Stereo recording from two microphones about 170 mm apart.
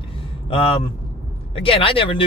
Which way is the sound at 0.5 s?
30° left (ahead or behind).